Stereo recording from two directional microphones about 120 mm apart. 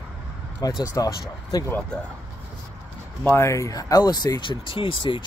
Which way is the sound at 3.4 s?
25° left (ahead or behind).